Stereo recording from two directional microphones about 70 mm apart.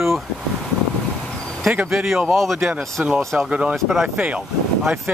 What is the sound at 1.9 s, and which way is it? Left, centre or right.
Speech, centre.